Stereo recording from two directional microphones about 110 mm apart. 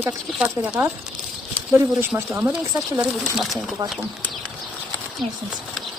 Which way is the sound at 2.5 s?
10° right (ahead or behind).